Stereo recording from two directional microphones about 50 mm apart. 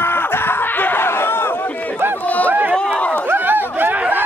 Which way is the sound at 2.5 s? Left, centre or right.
Right.